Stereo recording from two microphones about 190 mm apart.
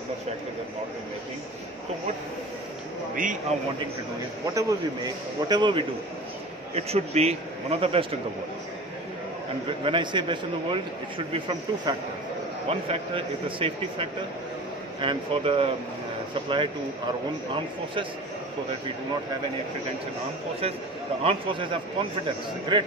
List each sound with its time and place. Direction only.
3.2 s a man's voice: 40° right (ahead or behind)
4.6 s a man's voice: 20° right (ahead or behind)
9.7 s a man's voice: 25° right (ahead or behind)
21.2 s a man's voice: 30° right (ahead or behind)
22.7 s a man's voice: 25° right (ahead or behind)